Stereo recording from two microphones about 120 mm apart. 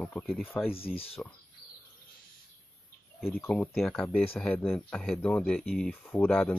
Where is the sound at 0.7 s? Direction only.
55° left (ahead or behind).